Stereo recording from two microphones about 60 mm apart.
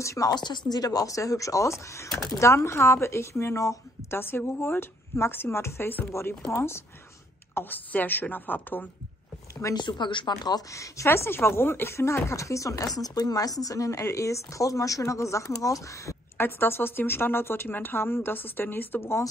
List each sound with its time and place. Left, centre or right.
0.0 s speech: left
0.7 s a woman's voice: left
7.5 s a woman's voice: left
9.6 s speech: left
11.1 s speech: left
16.3 s a woman's voice: left